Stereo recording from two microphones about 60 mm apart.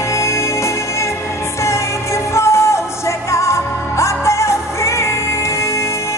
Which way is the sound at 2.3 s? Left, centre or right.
Left.